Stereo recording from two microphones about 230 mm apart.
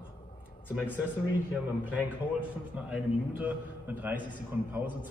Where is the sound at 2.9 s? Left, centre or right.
Centre.